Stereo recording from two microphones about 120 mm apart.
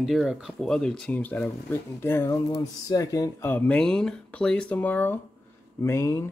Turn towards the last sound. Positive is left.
turn(degrees=20)  # may be behind; listen again after turning